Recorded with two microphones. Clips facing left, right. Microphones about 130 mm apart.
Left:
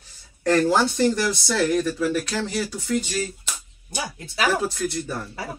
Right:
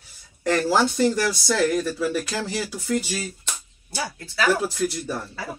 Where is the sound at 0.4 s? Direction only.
5° right (ahead or behind).